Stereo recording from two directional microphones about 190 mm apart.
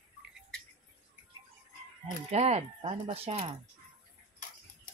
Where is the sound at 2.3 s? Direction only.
35° right (ahead or behind).